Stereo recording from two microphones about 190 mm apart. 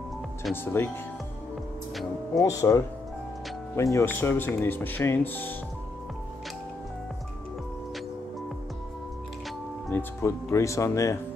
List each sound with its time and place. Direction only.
0.8 s speech: 15° left (ahead or behind)
2.3 s speech: 15° left (ahead or behind)
9.8 s speech: 15° left (ahead or behind)